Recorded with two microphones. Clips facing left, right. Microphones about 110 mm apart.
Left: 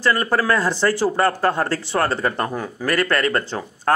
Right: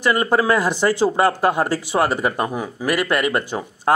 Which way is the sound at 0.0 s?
15° right (ahead or behind).